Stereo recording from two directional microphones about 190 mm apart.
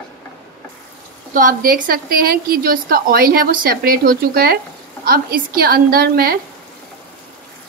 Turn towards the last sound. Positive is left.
turn(degrees=-50)  # may be behind; listen again after turning